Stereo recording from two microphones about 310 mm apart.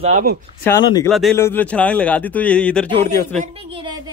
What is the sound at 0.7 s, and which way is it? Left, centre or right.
A man's voice, centre.